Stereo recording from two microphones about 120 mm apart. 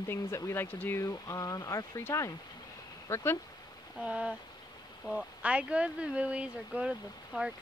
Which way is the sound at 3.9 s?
10° right (ahead or behind).